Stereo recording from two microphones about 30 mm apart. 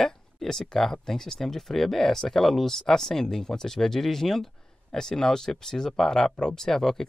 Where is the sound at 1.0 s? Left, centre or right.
Centre.